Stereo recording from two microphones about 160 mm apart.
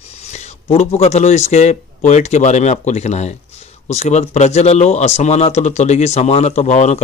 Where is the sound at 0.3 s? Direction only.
45° left (ahead or behind).